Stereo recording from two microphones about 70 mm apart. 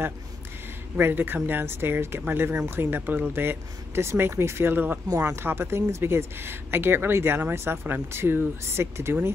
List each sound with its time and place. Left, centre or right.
0.9 s speech: right